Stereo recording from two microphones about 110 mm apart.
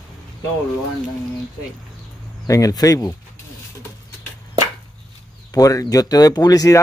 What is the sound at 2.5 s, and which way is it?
Speech, 30° left (ahead or behind).